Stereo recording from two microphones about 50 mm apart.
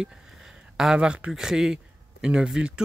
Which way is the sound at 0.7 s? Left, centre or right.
Centre.